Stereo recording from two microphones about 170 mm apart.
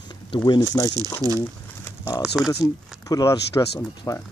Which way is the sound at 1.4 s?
20° left (ahead or behind).